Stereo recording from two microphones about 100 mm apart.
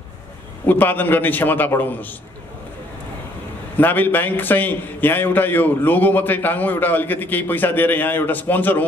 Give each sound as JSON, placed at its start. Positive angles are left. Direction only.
{"t": 0.7, "sound": "a man's voice", "side_deg": 20}
{"t": 3.7, "sound": "a man's voice", "side_deg": 20}